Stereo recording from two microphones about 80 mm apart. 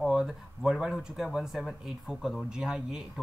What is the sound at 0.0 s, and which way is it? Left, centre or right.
Speech, centre.